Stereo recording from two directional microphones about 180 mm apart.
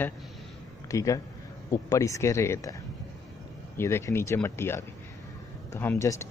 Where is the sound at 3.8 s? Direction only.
15° left (ahead or behind).